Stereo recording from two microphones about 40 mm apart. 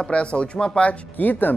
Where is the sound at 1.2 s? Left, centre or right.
Left.